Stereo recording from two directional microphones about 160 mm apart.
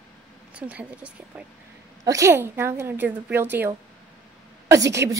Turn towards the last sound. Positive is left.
turn(degrees=-20)  # may be behind; listen again after turning